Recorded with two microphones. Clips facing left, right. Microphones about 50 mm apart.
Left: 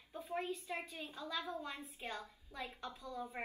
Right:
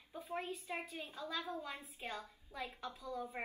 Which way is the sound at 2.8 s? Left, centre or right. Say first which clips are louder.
Right 1 dB; left.